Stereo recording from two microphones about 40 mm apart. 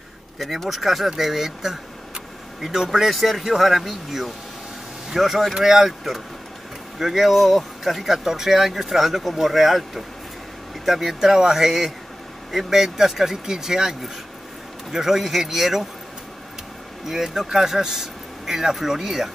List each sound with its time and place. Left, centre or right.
0.4 s speech: centre
17.0 s speech: centre